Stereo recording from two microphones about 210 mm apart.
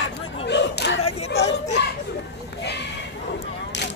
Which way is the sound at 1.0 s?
30° left (ahead or behind).